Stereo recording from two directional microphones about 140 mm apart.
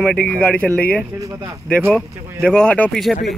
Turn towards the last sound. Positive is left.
turn(degrees=0)  # may be behind; listen again after turning